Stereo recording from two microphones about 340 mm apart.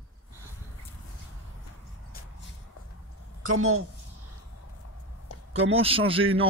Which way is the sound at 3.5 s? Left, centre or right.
Right.